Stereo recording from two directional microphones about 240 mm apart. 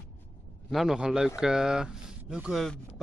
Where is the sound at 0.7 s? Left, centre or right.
Centre.